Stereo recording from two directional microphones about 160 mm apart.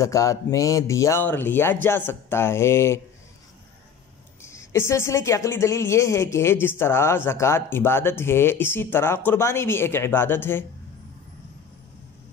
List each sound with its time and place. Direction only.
0.0 s a woman's voice: 20° left (ahead or behind)
4.4 s a woman's voice: 15° left (ahead or behind)